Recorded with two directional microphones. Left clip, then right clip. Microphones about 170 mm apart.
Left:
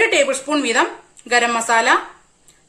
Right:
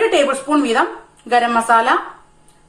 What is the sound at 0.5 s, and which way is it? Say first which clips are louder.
Speech: right 3 dB; 45° left (ahead or behind).